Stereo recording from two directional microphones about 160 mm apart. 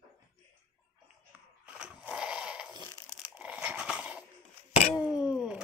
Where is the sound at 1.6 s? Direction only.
5° right (ahead or behind).